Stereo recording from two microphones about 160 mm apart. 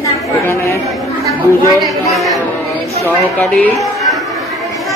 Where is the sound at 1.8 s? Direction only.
Centre (ahead or behind).